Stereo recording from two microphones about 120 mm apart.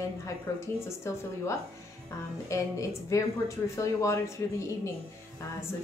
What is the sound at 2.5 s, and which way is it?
A woman's voice, 25° left (ahead or behind).